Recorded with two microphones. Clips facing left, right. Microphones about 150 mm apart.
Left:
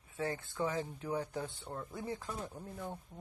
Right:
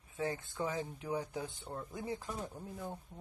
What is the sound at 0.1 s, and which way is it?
Speech, 20° right (ahead or behind).